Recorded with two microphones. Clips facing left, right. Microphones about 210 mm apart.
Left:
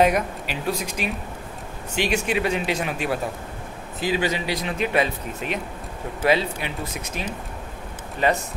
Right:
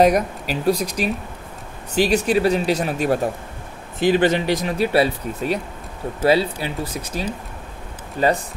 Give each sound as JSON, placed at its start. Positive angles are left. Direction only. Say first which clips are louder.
{"t": 0.0, "sound": "speech", "louder": "right 4 dB", "side_deg": -40}
{"t": 4.1, "sound": "speech", "louder": "right 7 dB", "side_deg": -50}